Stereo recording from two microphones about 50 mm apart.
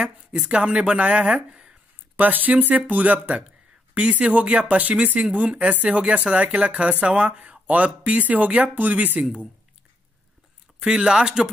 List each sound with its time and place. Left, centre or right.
0.0 s speech: centre
2.1 s speech: right
10.8 s speech: centre